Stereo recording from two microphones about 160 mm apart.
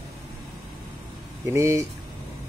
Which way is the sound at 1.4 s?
15° right (ahead or behind).